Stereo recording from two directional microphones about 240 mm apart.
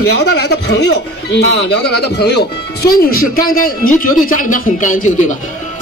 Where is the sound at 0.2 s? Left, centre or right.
Left.